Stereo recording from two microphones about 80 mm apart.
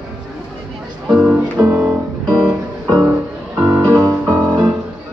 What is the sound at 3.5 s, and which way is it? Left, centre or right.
Music, centre.